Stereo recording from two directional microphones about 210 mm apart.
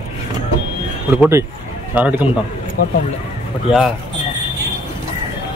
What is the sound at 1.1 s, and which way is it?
A man's voice, 10° right (ahead or behind).